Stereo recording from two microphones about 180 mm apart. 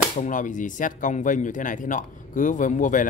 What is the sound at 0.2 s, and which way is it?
Speech, 45° left (ahead or behind).